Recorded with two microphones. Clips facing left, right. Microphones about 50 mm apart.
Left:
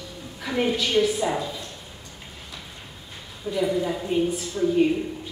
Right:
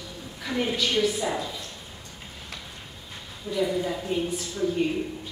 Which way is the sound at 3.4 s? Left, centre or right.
Centre.